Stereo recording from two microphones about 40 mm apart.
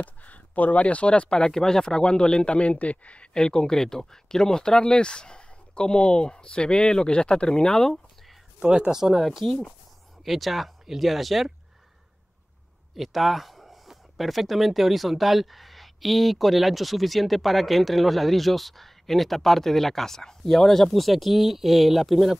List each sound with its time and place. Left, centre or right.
0.0 s speech: left
1.4 s speech: centre; by 3.3 s left
3.3 s speech: centre
8.5 s speech: centre
12.9 s speech: centre